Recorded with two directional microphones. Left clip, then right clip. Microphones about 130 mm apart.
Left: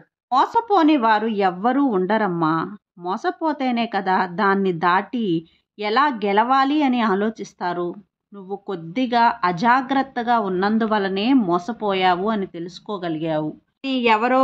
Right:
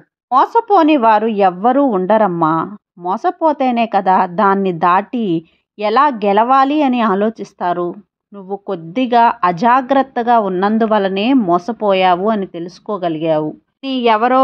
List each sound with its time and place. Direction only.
0.3 s speech: 45° right (ahead or behind)